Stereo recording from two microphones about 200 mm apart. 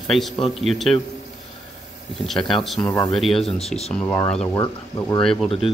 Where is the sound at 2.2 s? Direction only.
Centre (ahead or behind).